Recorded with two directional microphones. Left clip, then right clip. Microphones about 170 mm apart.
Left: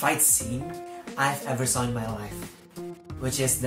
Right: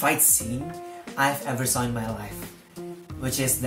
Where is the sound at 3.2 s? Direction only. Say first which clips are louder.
Even; 15° right (ahead or behind).